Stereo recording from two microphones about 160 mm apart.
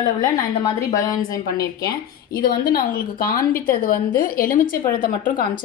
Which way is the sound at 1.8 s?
65° left (ahead or behind).